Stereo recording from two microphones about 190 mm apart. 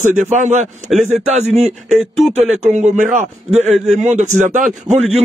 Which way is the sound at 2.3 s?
35° right (ahead or behind).